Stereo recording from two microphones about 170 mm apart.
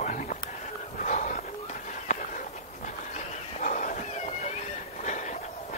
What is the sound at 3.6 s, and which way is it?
Cat, 45° left (ahead or behind).